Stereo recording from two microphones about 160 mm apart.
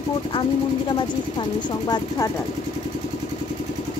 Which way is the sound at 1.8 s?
25° left (ahead or behind).